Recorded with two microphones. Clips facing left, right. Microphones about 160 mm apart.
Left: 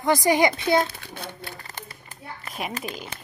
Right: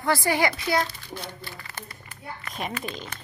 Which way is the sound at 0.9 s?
60° left (ahead or behind).